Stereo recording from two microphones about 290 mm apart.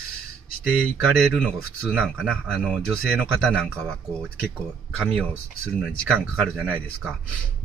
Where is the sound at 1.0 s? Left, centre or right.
Centre.